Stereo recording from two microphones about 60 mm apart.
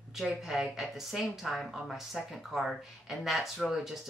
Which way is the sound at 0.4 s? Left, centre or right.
Centre.